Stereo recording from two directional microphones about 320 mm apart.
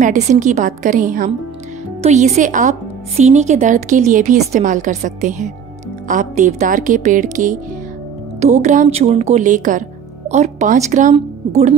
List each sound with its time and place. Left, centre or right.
0.0 s speech: right